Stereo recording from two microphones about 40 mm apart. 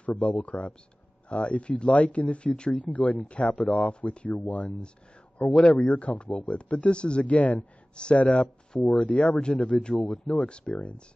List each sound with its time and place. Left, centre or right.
0.0 s speech: left
2.9 s speech: left
3.3 s speech: left
5.5 s speech: centre
5.9 s speech: left
7.2 s speech: left
7.9 s speech: left
8.7 s speech: centre
9.0 s speech: left
9.9 s speech: centre
10.4 s speech: left
10.7 s speech: left